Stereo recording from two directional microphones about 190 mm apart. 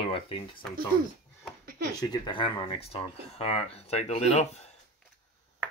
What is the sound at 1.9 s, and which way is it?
Speech, 25° left (ahead or behind).